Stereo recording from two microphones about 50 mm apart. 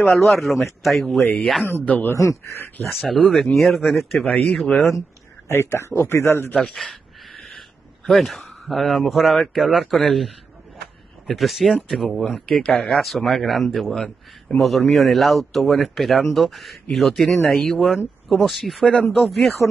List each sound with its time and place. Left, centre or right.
0.0 s a man's voice: centre
2.1 s a man's voice: left
2.9 s a man's voice: centre
5.5 s speech: left
6.7 s a sound: centre
9.6 s a man's voice: centre
11.3 s a man's voice: centre
13.9 s speech: left
14.6 s a man's voice: centre